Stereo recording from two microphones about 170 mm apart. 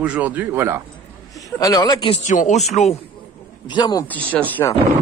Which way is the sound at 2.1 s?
45° left (ahead or behind).